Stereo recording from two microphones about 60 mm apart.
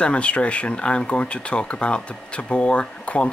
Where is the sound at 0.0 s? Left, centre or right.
Centre.